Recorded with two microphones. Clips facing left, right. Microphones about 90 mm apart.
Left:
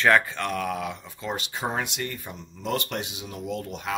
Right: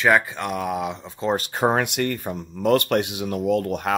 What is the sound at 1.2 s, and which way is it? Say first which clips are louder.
Speech: right 9 dB; 45° right (ahead or behind).